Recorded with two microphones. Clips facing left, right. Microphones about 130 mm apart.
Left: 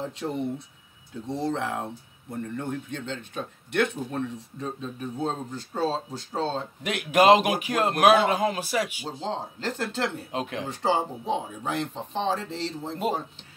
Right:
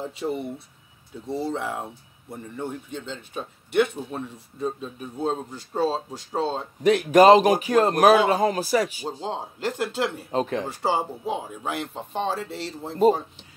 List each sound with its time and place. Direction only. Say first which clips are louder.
0.1 s speech: right 1 dB; 10° right (ahead or behind)
6.8 s a man's voice: right 6 dB; 35° right (ahead or behind)
9.2 s speech: right 1 dB; 10° right (ahead or behind)
10.3 s a man's voice: right 6 dB; 35° right (ahead or behind)
10.7 s speech: even; 10° right (ahead or behind)